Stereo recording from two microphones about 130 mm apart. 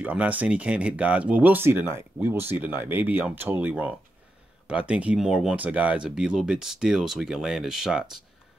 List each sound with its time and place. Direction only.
0.0 s speech: 10° right (ahead or behind)